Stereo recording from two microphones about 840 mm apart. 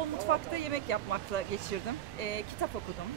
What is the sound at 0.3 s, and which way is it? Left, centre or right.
Speech, left.